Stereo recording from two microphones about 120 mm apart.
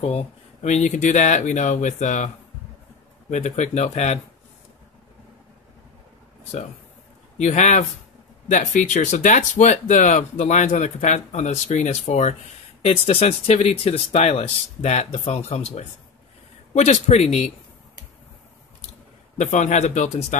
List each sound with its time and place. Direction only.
0.0 s a man's voice: 60° left (ahead or behind)
7.3 s speech: 80° left
8.5 s speech: 90° left
12.8 s speech: 55° left (ahead or behind)
19.3 s a man's voice: 75° left (ahead or behind)